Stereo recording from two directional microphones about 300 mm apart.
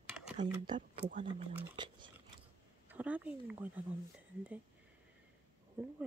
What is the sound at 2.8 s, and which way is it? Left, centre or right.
Speech, centre.